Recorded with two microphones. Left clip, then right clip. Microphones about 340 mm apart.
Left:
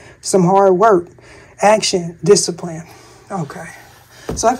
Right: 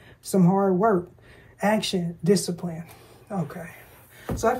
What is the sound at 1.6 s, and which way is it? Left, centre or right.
Speech, centre.